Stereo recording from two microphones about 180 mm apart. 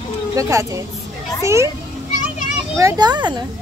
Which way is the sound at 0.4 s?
20° right (ahead or behind).